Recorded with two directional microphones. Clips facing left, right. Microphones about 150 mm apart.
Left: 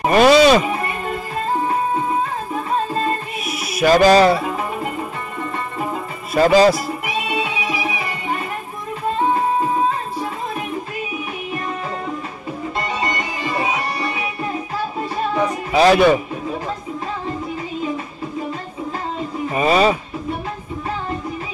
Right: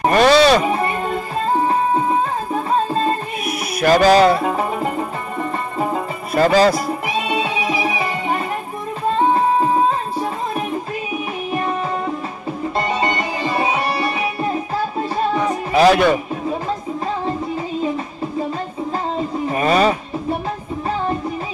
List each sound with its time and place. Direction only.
0.1 s music: 5° left (ahead or behind)
3.4 s music: centre (ahead or behind)
6.3 s speech: 10° left (ahead or behind)
7.2 s music: 30° right (ahead or behind)
12.7 s music: 30° right (ahead or behind)
15.8 s a man's voice: centre (ahead or behind)
19.6 s a man's voice: 5° left (ahead or behind)